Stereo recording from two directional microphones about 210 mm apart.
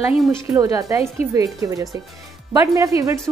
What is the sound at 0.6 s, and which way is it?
A woman's voice, 15° right (ahead or behind).